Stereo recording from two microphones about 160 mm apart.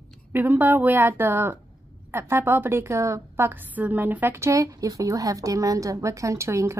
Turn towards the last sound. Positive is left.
turn(degrees=-15)  # may be behind; listen again after turning